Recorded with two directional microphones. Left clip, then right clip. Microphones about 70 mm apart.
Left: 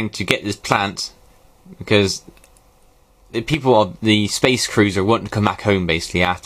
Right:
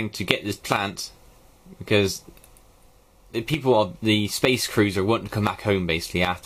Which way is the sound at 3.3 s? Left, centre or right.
Left.